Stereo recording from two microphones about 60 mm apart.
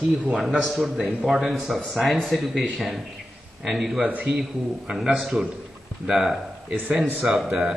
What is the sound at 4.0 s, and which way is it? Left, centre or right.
Speech, right.